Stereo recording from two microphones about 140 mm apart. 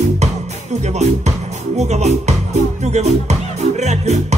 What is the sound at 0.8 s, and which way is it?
Speech, 50° right (ahead or behind).